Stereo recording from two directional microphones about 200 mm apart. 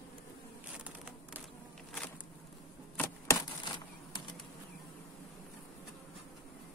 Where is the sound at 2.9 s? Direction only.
15° left (ahead or behind).